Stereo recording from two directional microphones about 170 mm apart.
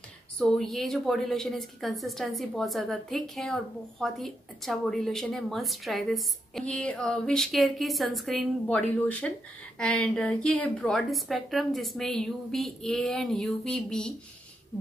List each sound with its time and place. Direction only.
0.4 s a woman's voice: centre (ahead or behind)